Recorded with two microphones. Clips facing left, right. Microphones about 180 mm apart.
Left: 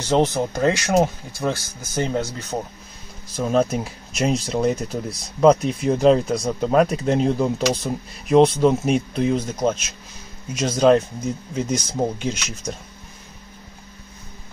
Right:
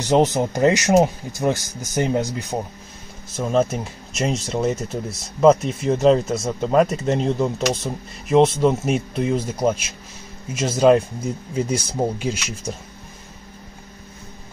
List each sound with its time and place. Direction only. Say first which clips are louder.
0.0 s speech: right 2 dB; 15° right (ahead or behind)
3.3 s speech: even; centre (ahead or behind)